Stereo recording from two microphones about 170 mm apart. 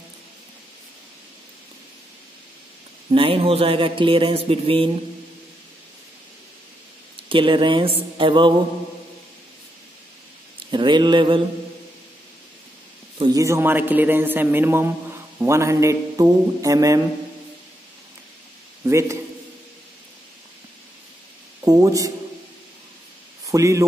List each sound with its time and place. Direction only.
3.1 s speech: 30° right (ahead or behind)
7.2 s speech: 30° right (ahead or behind)
10.7 s speech: 25° right (ahead or behind)
13.2 s a man's voice: 20° right (ahead or behind)
18.9 s a man's voice: 15° right (ahead or behind)
21.6 s speech: 20° right (ahead or behind)
23.4 s speech: 20° right (ahead or behind)